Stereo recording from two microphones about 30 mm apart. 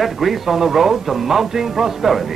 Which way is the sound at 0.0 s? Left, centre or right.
Centre.